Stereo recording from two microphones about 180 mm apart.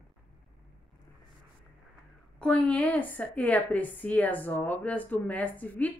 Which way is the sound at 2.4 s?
5° left (ahead or behind).